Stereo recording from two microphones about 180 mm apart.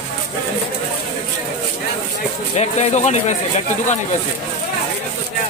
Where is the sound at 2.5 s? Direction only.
40° left (ahead or behind).